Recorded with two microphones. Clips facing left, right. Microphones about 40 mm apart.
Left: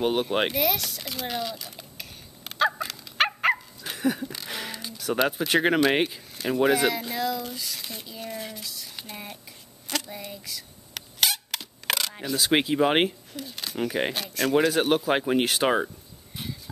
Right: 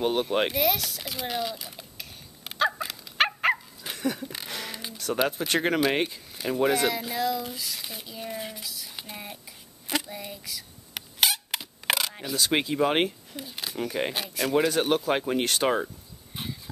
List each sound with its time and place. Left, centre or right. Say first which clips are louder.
0.0 s speech: left 1 dB; centre
0.5 s a sound: even; centre
4.0 s a sound: left 3 dB; centre
5.1 s speech: left 2 dB; centre
6.3 s speech: left 2 dB; centre
9.8 s a sound: right 1 dB; centre
10.1 s camera: even; centre
12.1 s speech: left 2 dB; centre
12.5 s speech: left 3 dB; centre
13.4 s speech: even; centre
13.7 s speech: left 3 dB; centre
14.1 s speech: left 2 dB; centre
14.6 s speech: left 1 dB; centre